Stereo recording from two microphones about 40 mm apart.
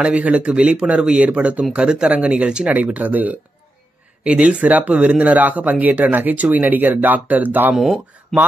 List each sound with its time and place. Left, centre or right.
0.0 s speech: right
1.8 s speech: centre
2.0 s speech: right
2.7 s speech: right
4.2 s speech: right